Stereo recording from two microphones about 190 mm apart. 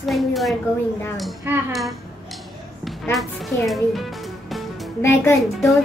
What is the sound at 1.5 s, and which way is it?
Speech, 10° right (ahead or behind).